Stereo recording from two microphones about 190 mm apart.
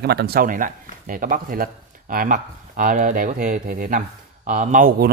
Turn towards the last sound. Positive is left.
turn(degrees=-45)  # may be behind; listen again after turning